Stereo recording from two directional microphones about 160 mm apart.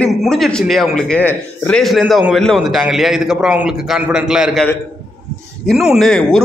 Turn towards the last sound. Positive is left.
turn(degrees=0)  # may be behind; listen again after turning